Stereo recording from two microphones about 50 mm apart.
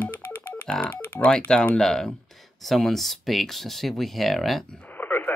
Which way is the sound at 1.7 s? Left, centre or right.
Centre.